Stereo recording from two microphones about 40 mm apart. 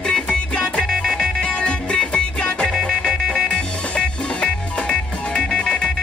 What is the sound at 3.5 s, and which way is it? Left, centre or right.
Music, left.